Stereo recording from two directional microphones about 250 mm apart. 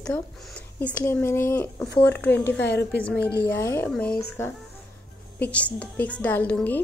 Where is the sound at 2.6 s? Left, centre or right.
Left.